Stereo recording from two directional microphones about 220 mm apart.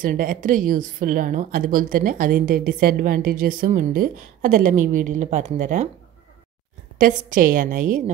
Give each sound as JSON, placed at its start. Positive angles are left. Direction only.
{"t": 0.0, "sound": "a woman's voice", "side_deg": -40}
{"t": 7.0, "sound": "a woman's voice", "side_deg": -40}